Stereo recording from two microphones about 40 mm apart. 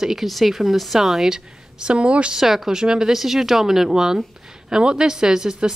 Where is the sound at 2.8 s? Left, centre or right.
Right.